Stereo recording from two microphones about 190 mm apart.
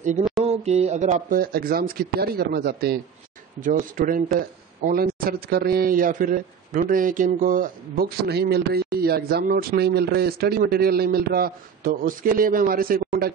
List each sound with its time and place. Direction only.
0.4 s a man's voice: 35° right (ahead or behind); by 3.0 s 55° right (ahead or behind)
3.6 s a man's voice: 45° right (ahead or behind)